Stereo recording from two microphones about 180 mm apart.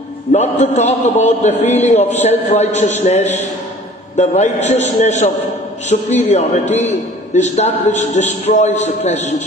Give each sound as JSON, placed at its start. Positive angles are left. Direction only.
{"t": 0.3, "sound": "a man's voice", "side_deg": 40}